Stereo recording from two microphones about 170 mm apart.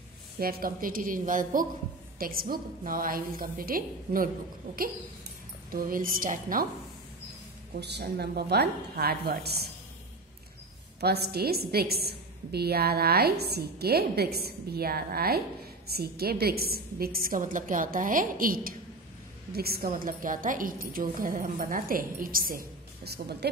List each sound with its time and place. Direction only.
0.4 s a woman's voice: 60° right (ahead or behind)
5.7 s a woman's voice: 55° right (ahead or behind)
7.8 s a woman's voice: 75° right (ahead or behind)
11.0 s a woman's voice: 70° right (ahead or behind)